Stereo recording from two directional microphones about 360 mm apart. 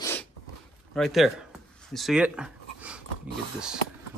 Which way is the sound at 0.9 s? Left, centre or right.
Centre.